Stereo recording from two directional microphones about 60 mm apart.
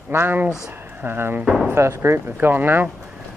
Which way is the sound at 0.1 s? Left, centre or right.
Right.